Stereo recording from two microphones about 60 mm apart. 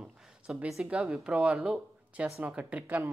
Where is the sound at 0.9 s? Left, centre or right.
Centre.